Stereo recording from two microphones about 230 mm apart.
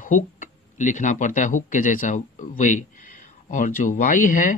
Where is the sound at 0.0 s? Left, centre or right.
Left.